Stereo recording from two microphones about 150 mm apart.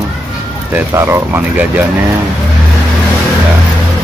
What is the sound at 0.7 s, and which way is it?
Speech, 15° right (ahead or behind).